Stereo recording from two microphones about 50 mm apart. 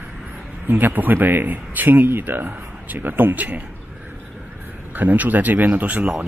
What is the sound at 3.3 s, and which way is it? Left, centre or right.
Speech, right.